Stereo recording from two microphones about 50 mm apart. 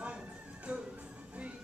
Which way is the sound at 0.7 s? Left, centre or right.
Right.